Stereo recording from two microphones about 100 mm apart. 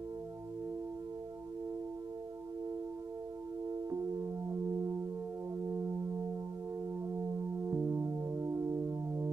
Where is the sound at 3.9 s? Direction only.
35° right (ahead or behind).